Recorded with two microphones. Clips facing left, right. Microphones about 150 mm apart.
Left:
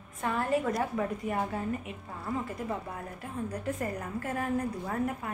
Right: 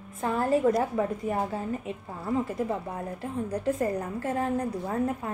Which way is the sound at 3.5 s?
30° right (ahead or behind).